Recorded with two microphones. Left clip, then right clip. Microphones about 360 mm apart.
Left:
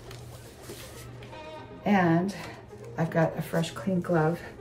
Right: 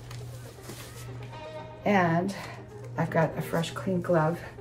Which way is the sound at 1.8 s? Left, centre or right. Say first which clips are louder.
Even; centre.